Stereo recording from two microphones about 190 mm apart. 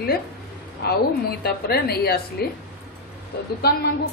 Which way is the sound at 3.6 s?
55° left (ahead or behind).